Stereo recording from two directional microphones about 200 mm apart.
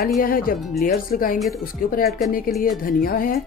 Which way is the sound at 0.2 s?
45° left (ahead or behind).